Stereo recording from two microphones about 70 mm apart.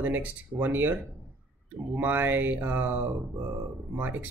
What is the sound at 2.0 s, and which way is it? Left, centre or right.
Speech, right.